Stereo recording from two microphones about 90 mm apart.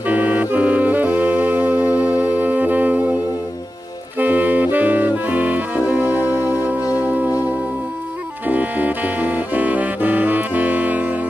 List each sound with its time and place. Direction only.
0.0 s saxophone: 20° right (ahead or behind)
4.2 s saxophone: 20° right (ahead or behind)
7.0 s music: 20° right (ahead or behind)
8.5 s saxophone: 20° right (ahead or behind)